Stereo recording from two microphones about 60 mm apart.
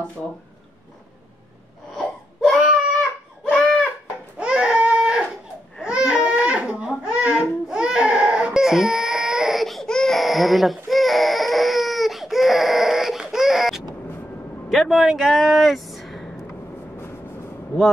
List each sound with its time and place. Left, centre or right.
2.0 s crying: centre
4.4 s baby cry: centre
5.8 s crying: centre
6.9 s a sound: centre
7.6 s baby cry: centre
9.8 s baby cry: centre
10.1 s baby cry: centre
14.7 s a sound: centre